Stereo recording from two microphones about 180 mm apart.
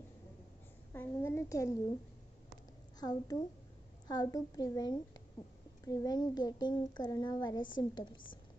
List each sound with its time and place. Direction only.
0.9 s a child's voice: 15° left (ahead or behind)
3.0 s a child's voice: 20° left (ahead or behind)